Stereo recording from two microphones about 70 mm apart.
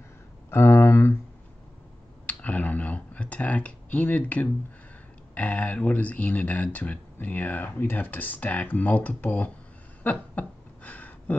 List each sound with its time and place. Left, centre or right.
0.5 s speech: left
2.2 s speech: left
10.0 s a sound: left